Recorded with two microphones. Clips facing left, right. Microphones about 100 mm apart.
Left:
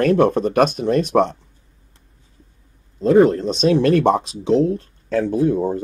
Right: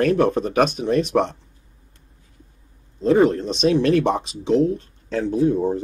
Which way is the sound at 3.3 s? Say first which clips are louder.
Left 2 dB; 50° left (ahead or behind).